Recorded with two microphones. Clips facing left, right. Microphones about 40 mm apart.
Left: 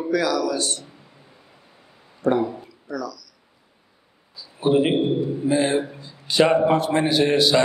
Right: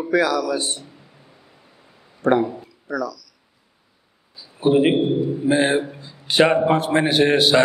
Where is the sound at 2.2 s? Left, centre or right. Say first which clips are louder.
Right 3 dB; right.